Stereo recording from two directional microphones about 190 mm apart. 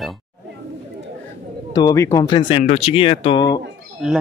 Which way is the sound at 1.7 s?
20° left (ahead or behind).